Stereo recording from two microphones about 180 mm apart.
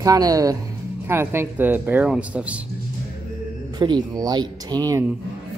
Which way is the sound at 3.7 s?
25° right (ahead or behind).